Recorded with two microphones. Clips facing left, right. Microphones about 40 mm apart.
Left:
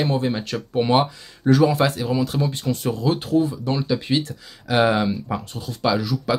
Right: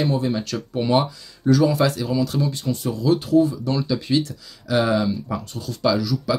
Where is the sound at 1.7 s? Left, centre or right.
Left.